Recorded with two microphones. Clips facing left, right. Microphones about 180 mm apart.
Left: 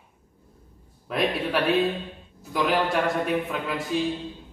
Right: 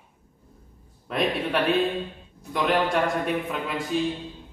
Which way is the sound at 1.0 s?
Centre (ahead or behind).